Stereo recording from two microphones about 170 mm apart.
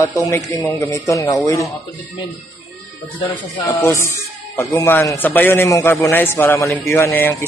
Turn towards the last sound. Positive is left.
turn(degrees=10)  # may be behind; listen again after turning